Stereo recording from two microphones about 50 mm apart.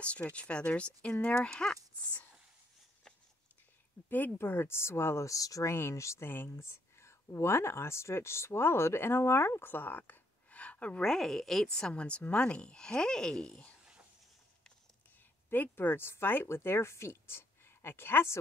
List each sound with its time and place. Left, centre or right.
0.3 s a woman's voice: left
4.4 s speech: left
5.8 s speech: left
6.2 s speech: left
6.5 s speech: left
10.5 s a sound: left
11.0 s a woman's voice: centre
11.9 s speech: left
15.5 s speech: left
16.4 s a woman's voice: left